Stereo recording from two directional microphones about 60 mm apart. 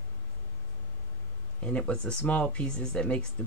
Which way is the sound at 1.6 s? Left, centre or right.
Centre.